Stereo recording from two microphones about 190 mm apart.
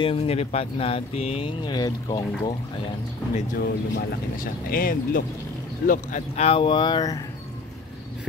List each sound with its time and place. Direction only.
0.0 s speech: 30° left (ahead or behind)
3.5 s speech: 55° left (ahead or behind)
5.9 s speech: 40° left (ahead or behind); by 7.2 s 20° left (ahead or behind)